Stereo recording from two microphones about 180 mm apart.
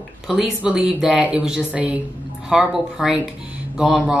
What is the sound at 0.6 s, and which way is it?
A woman's voice, 5° right (ahead or behind).